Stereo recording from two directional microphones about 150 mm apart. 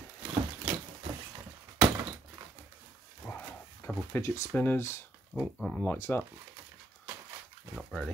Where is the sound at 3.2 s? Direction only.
5° left (ahead or behind).